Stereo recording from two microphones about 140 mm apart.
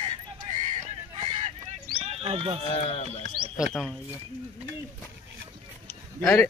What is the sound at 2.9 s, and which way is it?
Speech, 50° left (ahead or behind).